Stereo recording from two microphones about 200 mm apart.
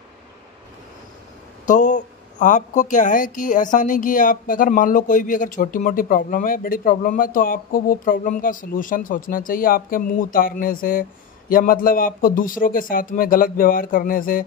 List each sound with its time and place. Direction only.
1.7 s a woman's voice: 40° left (ahead or behind)